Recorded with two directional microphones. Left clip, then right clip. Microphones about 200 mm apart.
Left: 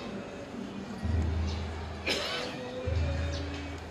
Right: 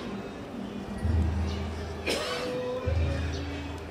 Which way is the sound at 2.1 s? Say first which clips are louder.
Right 1 dB; 35° right (ahead or behind).